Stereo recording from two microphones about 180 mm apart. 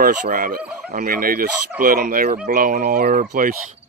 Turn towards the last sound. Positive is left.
turn(degrees=-50)  # may be behind; listen again after turning